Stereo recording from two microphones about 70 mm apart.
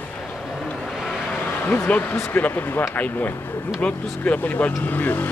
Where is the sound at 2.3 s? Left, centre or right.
Left.